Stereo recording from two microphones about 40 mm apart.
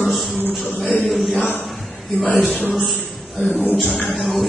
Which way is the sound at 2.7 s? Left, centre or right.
Centre.